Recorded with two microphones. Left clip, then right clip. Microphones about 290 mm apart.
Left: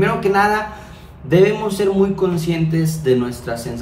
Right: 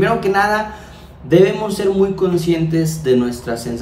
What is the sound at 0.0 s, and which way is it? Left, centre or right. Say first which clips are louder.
A man's voice: right 1 dB; centre.